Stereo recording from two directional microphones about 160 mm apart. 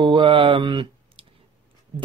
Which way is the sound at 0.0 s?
30° right (ahead or behind).